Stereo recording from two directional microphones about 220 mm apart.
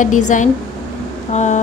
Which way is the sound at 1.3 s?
30° left (ahead or behind).